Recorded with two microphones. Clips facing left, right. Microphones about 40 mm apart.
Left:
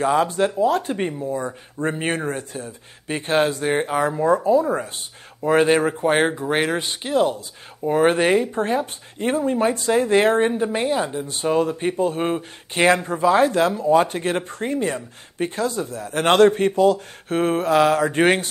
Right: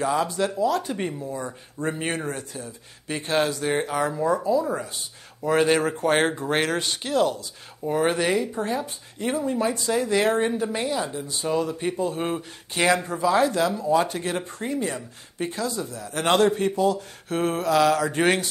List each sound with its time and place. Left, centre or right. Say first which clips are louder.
0.0 s speech: left 5 dB; left